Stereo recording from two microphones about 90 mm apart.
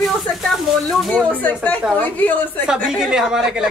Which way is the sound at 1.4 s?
20° left (ahead or behind).